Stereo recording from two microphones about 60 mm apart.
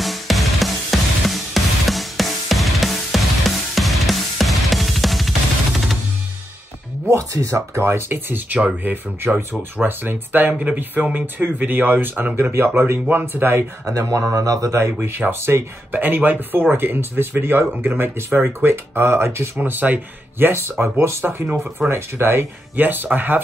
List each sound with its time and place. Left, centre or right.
0.0 s music: centre
7.8 s speech: right
13.8 s speech: right
14.8 s speech: right
19.5 s speech: right